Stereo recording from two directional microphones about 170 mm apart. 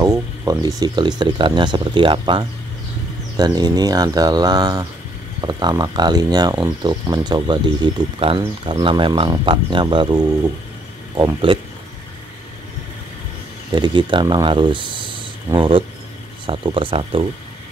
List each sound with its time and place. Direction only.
0.0 s speech: 20° right (ahead or behind)
13.7 s speech: 30° right (ahead or behind)